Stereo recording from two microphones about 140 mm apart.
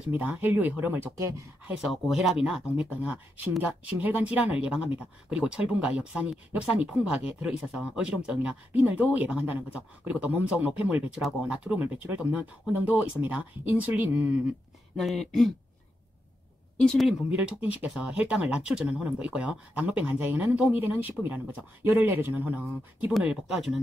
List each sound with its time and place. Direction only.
0.1 s speech: 10° right (ahead or behind)
1.7 s speech: centre (ahead or behind)
15.0 s speech: centre (ahead or behind)
16.8 s speech: 5° left (ahead or behind)
17.6 s speech: 10° right (ahead or behind)
23.2 s speech: 5° right (ahead or behind)